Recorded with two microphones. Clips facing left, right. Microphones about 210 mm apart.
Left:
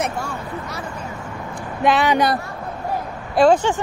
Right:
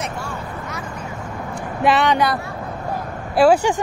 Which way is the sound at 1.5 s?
Centre (ahead or behind).